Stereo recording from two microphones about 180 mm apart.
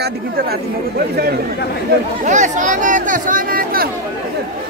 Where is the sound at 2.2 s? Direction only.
40° right (ahead or behind).